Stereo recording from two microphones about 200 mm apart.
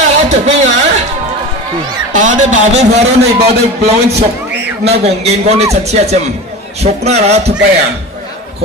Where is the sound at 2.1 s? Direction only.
40° right (ahead or behind).